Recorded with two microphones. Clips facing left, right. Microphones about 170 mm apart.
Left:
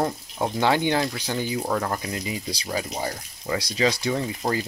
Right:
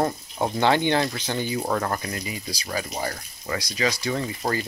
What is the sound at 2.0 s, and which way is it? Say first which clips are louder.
Frying: left 2 dB; 15° left (ahead or behind).